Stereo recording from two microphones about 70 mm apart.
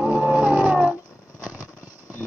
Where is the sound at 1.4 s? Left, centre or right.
Right.